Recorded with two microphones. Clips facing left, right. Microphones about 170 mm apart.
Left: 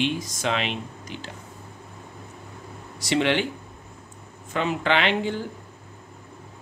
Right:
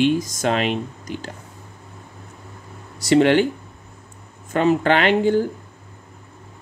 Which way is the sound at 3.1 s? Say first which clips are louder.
Right 8 dB; 45° right (ahead or behind).